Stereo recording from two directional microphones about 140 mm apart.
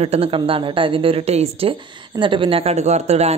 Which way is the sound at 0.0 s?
45° right (ahead or behind).